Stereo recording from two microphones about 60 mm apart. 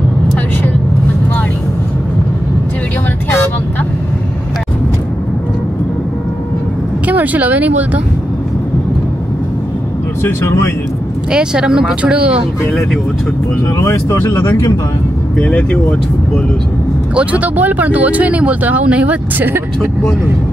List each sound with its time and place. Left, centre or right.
7.1 s speech: right
10.4 s speech: left
11.3 s speech: centre
13.7 s speech: left
15.3 s speech: left
17.1 s speech: right